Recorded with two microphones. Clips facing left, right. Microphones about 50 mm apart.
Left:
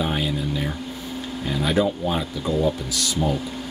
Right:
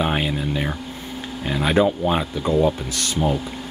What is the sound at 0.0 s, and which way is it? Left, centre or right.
Speech, right.